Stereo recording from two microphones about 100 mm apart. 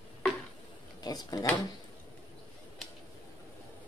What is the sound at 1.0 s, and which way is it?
Speech, 40° left (ahead or behind).